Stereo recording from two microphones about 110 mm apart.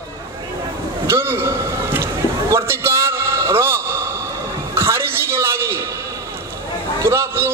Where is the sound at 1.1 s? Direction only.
20° right (ahead or behind).